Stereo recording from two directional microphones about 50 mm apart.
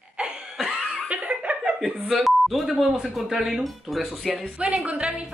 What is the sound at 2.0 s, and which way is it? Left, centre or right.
Speech, centre.